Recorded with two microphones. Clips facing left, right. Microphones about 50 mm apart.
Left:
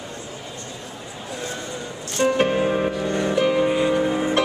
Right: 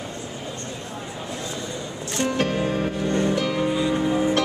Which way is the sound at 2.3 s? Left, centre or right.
Left.